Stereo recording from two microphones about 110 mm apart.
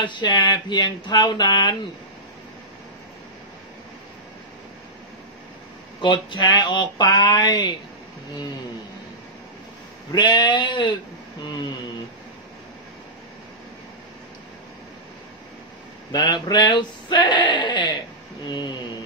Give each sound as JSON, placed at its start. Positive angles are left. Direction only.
{"t": 0.0, "sound": "speech", "side_deg": 45}
{"t": 5.9, "sound": "speech", "side_deg": 45}
{"t": 10.1, "sound": "speech", "side_deg": 40}
{"t": 16.1, "sound": "speech", "side_deg": 40}